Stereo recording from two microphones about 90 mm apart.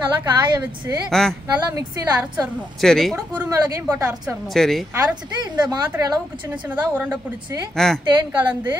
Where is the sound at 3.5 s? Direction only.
40° right (ahead or behind).